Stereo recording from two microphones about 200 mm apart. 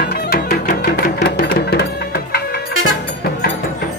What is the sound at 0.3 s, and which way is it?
Music, 50° left (ahead or behind).